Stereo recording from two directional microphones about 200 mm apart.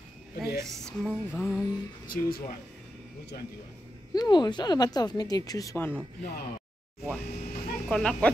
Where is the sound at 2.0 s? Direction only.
45° left (ahead or behind).